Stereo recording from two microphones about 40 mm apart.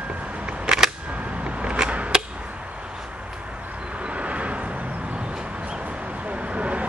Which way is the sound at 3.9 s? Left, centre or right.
Right.